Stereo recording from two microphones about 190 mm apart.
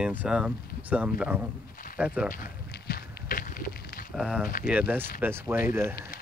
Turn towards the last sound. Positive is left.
turn(degrees=-15)  # may be behind; listen again after turning